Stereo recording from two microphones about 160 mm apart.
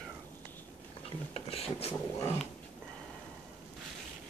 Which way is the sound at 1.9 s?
10° left (ahead or behind).